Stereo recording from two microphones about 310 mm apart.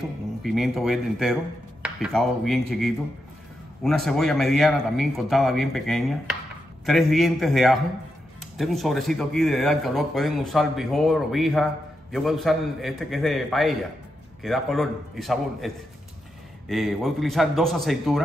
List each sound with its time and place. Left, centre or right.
0.4 s a man's voice: centre